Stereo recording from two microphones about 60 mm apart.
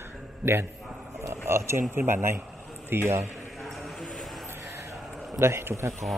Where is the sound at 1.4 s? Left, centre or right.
Right.